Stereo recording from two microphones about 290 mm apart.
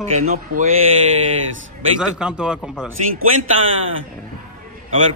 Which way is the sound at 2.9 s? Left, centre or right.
Right.